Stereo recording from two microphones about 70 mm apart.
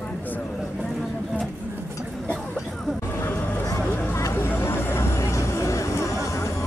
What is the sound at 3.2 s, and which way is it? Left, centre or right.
Vehicle, left.